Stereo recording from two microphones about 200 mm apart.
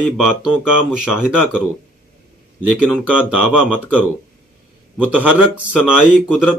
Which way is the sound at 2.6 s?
5° right (ahead or behind).